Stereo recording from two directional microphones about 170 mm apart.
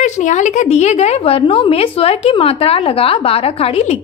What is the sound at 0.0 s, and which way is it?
A woman's voice, 45° left (ahead or behind).